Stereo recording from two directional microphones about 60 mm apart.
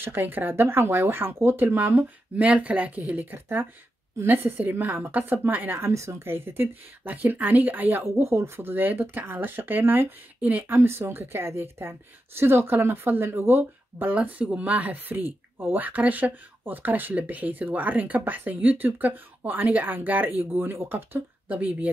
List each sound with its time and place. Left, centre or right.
0.0 s speech: right
2.4 s speech: right
5.8 s speech: right
7.1 s speech: right
14.2 s speech: right
21.5 s speech: right